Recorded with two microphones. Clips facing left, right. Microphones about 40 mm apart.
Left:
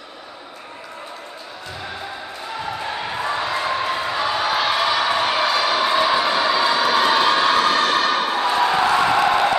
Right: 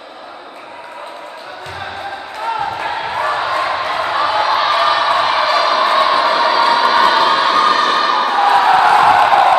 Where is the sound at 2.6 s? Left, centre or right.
Right.